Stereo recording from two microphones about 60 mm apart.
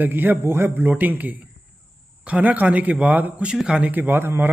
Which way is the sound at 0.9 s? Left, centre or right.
Right.